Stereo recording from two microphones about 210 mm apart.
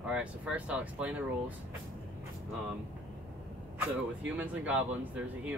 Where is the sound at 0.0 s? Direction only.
5° right (ahead or behind).